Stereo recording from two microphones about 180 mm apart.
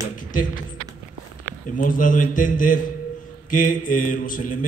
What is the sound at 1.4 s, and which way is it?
A man's voice, 45° left (ahead or behind).